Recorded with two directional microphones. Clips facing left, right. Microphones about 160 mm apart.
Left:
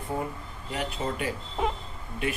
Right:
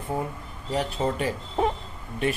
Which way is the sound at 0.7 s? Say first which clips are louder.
Right 5 dB; 35° right (ahead or behind).